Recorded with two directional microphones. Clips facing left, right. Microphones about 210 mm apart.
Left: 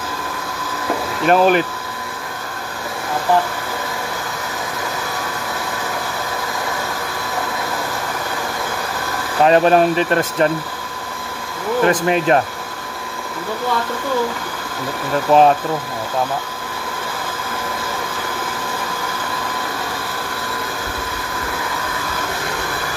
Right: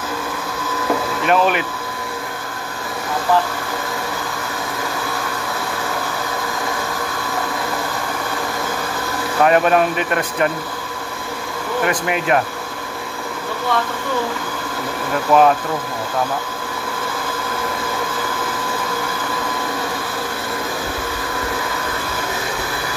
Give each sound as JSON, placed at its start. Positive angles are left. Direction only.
{"t": 1.2, "sound": "speech", "side_deg": 35}
{"t": 9.4, "sound": "speech", "side_deg": 30}
{"t": 11.8, "sound": "speech", "side_deg": 35}
{"t": 15.3, "sound": "speech", "side_deg": 30}